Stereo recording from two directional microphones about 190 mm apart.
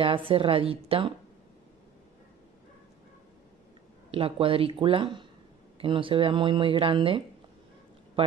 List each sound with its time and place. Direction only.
0.0 s speech: 30° right (ahead or behind)
4.1 s speech: 30° right (ahead or behind)